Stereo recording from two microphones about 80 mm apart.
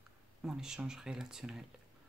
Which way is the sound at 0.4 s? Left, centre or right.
Centre.